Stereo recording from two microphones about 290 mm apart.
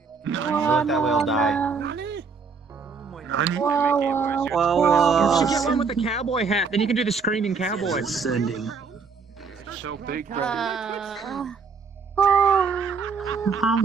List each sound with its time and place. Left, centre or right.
0.2 s a sound: right
0.6 s speech: centre
1.8 s music: right
3.3 s speech: right
3.6 s speech: centre
5.8 s a man's voice: centre
6.9 s speech: centre
9.7 s speech: right
10.4 s speech: centre
12.3 s groan: centre
12.8 s music: right
13.4 s speech: centre